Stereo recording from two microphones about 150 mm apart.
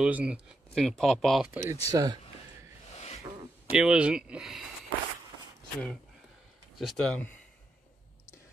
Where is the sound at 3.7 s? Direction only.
5° right (ahead or behind).